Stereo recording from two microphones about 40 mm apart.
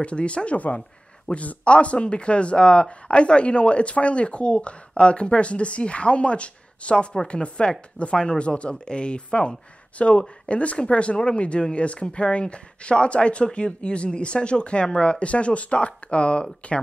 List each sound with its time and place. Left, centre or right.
0.0 s speech: left